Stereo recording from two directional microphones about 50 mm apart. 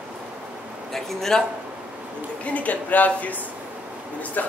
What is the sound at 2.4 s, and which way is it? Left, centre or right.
Speech, left.